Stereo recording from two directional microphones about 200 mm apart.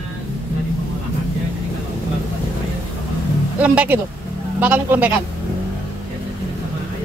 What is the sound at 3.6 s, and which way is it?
A man's voice, 5° right (ahead or behind).